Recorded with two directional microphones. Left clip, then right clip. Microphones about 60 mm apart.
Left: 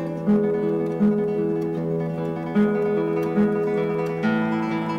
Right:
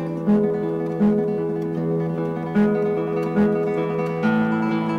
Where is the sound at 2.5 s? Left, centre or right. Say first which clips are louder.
Right 1 dB; right.